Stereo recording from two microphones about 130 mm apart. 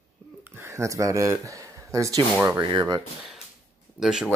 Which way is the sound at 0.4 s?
20° right (ahead or behind).